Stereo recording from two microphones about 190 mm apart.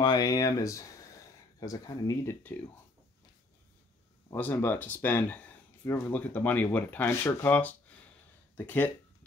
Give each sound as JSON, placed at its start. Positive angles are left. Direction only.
{"t": 0.0, "sound": "speech", "side_deg": 20}
{"t": 4.3, "sound": "speech", "side_deg": 10}